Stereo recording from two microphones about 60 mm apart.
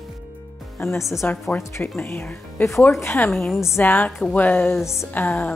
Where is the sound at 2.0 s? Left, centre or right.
Left.